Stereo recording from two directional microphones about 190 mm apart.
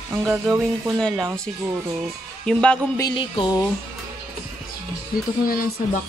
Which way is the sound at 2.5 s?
5° left (ahead or behind).